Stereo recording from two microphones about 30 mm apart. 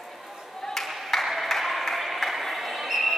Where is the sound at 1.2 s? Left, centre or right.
Centre.